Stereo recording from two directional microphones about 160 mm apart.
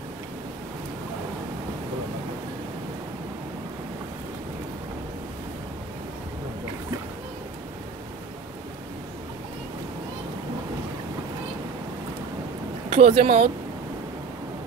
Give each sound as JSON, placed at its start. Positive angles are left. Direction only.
{"t": 12.9, "sound": "speech", "side_deg": -40}